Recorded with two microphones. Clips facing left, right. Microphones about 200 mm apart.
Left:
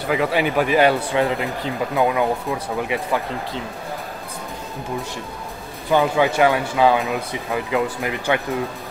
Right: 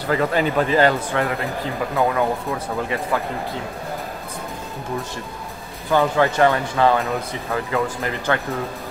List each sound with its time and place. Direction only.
0.1 s speech: 10° left (ahead or behind)
5.9 s speech: 15° left (ahead or behind)